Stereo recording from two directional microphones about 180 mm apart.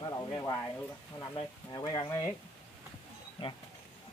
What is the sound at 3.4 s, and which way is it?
Speech, 30° left (ahead or behind).